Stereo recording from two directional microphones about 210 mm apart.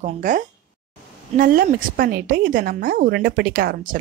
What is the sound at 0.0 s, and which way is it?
A woman's voice, 35° right (ahead or behind).